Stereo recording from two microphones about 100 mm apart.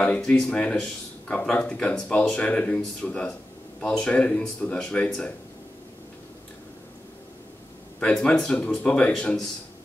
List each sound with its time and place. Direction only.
0.0 s speech: 10° left (ahead or behind)
8.0 s speech: 5° left (ahead or behind)